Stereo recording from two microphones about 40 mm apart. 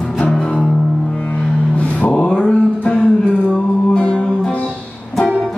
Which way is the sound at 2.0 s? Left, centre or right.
Left.